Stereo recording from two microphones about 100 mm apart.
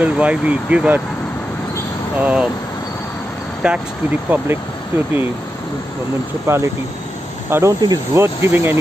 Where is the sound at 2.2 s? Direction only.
15° right (ahead or behind).